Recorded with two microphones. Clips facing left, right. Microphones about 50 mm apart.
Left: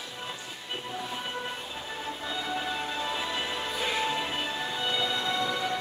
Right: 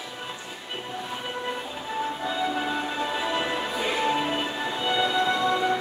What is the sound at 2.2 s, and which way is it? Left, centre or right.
Music, centre.